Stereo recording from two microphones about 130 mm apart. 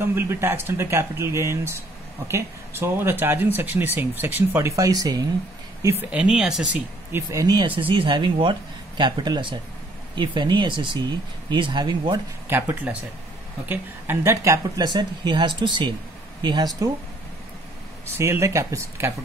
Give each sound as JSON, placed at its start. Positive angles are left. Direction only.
{"t": 0.0, "sound": "speech", "side_deg": -20}
{"t": 6.1, "sound": "speech", "side_deg": -5}
{"t": 7.1, "sound": "speech", "side_deg": -20}
{"t": 12.4, "sound": "speech", "side_deg": -15}
{"t": 18.1, "sound": "speech", "side_deg": -20}